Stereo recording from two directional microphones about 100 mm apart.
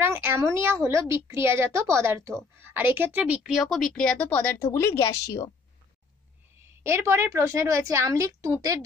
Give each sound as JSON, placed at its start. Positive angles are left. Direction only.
{"t": 0.0, "sound": "a woman's voice", "side_deg": -25}
{"t": 3.4, "sound": "speech", "side_deg": -5}
{"t": 4.7, "sound": "speech", "side_deg": 30}
{"t": 6.8, "sound": "a woman's voice", "side_deg": -25}